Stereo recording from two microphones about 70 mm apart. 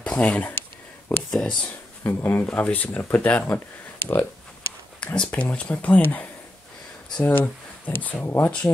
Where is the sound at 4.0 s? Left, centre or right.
Left.